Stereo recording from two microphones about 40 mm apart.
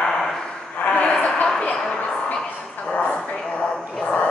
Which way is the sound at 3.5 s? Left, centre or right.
Centre.